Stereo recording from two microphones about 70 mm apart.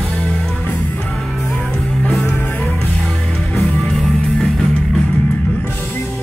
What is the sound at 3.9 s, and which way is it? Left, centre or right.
Music, centre.